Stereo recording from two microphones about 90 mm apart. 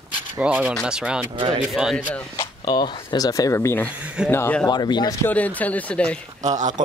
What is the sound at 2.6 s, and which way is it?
Speech, 55° left (ahead or behind).